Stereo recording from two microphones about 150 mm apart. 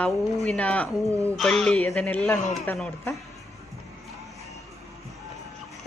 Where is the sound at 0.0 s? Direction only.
5° left (ahead or behind).